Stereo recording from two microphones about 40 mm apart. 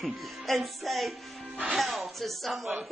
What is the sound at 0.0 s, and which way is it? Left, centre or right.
Speech, centre.